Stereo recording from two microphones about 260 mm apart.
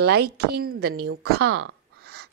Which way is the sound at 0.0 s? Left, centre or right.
Right.